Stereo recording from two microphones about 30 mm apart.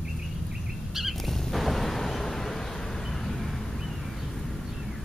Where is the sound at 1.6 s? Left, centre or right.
Centre.